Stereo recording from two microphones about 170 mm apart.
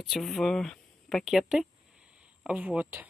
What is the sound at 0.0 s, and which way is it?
Speech, centre (ahead or behind).